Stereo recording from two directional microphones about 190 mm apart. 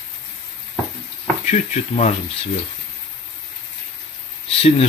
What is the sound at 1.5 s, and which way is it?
Speech, 40° left (ahead or behind).